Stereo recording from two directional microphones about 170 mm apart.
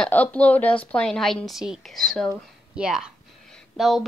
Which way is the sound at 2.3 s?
Centre (ahead or behind).